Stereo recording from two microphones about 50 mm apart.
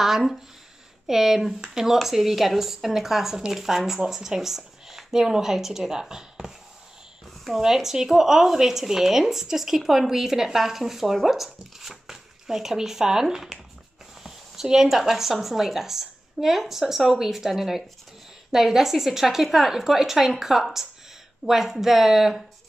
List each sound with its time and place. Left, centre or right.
0.0 s speech: centre
7.6 s speech: centre